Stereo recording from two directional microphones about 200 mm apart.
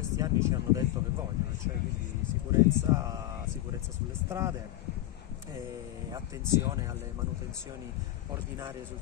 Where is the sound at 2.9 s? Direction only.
15° right (ahead or behind).